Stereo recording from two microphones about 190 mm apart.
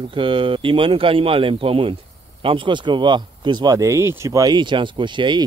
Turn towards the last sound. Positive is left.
turn(degrees=-25)  # may be behind; listen again after turning